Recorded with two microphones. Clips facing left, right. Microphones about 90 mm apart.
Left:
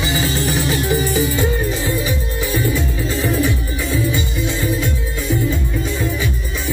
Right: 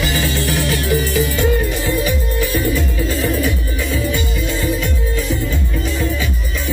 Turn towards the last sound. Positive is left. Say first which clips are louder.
# right 1 dB
turn(degrees=20)  # may be behind; listen again after turning